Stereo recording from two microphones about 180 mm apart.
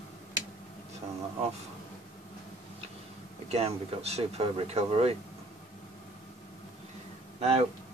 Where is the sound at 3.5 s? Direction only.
35° right (ahead or behind).